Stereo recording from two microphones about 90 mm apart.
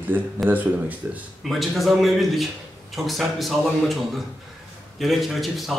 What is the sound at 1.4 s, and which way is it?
A man's voice, centre (ahead or behind).